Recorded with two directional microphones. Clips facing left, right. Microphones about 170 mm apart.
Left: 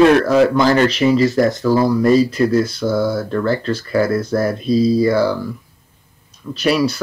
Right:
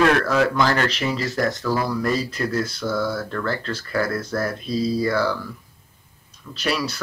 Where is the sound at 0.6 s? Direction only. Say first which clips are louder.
Left 9 dB; 15° left (ahead or behind).